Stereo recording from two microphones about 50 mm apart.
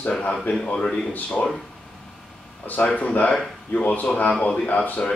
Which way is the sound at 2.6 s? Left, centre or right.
Left.